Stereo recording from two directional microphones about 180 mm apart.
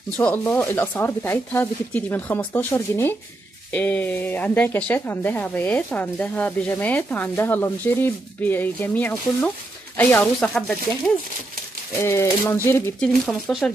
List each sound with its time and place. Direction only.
0.2 s speech: 10° left (ahead or behind)
12.0 s speech: 15° left (ahead or behind)
13.2 s speech: centre (ahead or behind)